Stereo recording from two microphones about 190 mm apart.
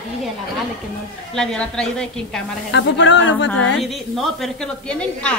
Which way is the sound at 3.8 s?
Centre (ahead or behind).